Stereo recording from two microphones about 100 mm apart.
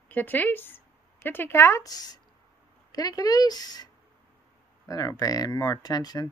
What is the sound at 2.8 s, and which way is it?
Speech, 40° left (ahead or behind).